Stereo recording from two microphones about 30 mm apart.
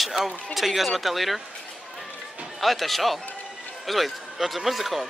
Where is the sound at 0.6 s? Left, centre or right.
Centre.